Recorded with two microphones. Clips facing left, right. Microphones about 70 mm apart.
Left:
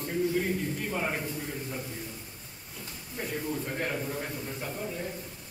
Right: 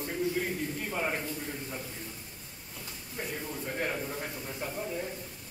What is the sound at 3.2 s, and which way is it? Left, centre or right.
A man's voice, centre.